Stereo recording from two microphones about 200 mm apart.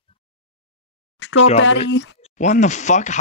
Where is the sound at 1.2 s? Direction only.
65° left (ahead or behind).